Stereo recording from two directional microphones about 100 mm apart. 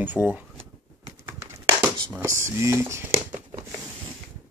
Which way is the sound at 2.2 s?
30° right (ahead or behind).